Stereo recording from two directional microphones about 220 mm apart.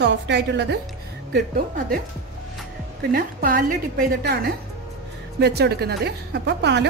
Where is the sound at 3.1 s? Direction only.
40° right (ahead or behind).